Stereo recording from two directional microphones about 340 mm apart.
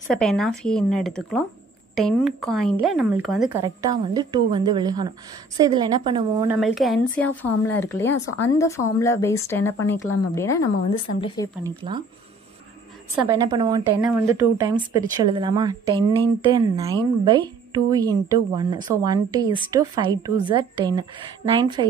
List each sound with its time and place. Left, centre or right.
0.1 s a woman's voice: centre
13.1 s a woman's voice: centre